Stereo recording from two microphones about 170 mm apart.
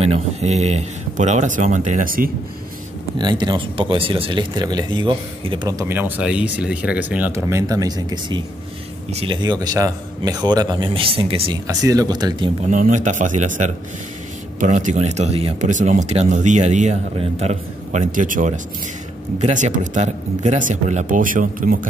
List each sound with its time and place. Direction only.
0.0 s speech: 40° right (ahead or behind); by 2.3 s 55° right (ahead or behind)
3.2 s speech: 25° right (ahead or behind)
11.6 s speech: 20° right (ahead or behind)
12.6 s speech: 50° right (ahead or behind)